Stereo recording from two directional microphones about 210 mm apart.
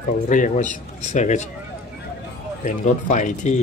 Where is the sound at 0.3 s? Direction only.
35° left (ahead or behind).